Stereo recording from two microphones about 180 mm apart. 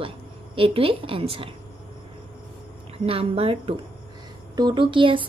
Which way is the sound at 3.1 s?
30° right (ahead or behind).